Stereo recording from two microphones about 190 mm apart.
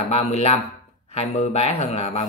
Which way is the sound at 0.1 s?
35° left (ahead or behind).